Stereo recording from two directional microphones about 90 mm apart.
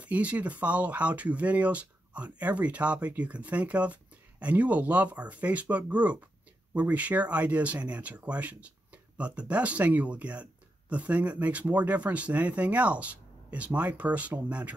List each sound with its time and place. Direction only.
0.0 s speech: 15° right (ahead or behind)